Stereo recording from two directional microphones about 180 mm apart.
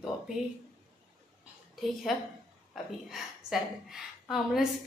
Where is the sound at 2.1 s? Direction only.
Centre (ahead or behind).